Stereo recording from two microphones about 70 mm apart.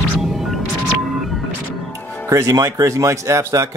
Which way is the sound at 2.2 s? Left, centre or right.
Right.